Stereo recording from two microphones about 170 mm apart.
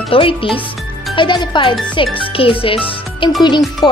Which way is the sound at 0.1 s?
30° left (ahead or behind).